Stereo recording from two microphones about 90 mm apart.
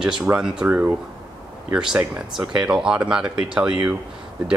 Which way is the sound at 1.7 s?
5° right (ahead or behind).